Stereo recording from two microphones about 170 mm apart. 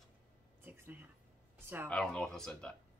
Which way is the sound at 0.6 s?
10° right (ahead or behind).